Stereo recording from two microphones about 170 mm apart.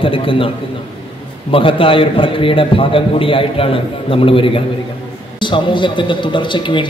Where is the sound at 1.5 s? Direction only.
30° left (ahead or behind).